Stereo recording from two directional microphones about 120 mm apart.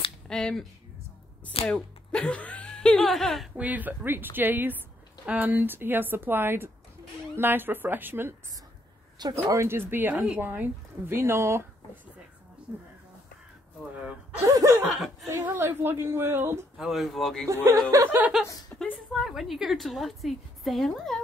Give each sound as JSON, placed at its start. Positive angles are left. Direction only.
{"t": 0.3, "sound": "a woman's voice", "side_deg": 5}
{"t": 1.7, "sound": "speech", "side_deg": 10}
{"t": 3.5, "sound": "speech", "side_deg": -15}
{"t": 9.2, "sound": "speech", "side_deg": -25}
{"t": 10.1, "sound": "a woman's voice", "side_deg": -5}
{"t": 10.4, "sound": "speech", "side_deg": -15}
{"t": 14.4, "sound": "speech", "side_deg": -25}
{"t": 14.9, "sound": "speech", "side_deg": 0}
{"t": 15.4, "sound": "speech", "side_deg": -20}
{"t": 16.7, "sound": "a woman's voice", "side_deg": 0}
{"t": 17.9, "sound": "speech", "side_deg": -15}
{"t": 18.8, "sound": "a sound", "side_deg": 10}
{"t": 19.1, "sound": "a woman's voice", "side_deg": 0}